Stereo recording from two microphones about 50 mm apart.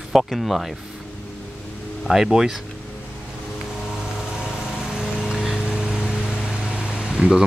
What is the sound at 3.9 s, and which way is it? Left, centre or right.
Vehicle, centre.